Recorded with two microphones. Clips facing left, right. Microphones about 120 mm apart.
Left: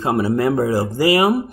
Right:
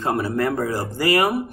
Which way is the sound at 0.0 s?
10° left (ahead or behind).